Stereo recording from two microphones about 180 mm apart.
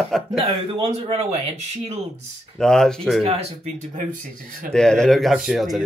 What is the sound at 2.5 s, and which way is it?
Speech, 5° left (ahead or behind).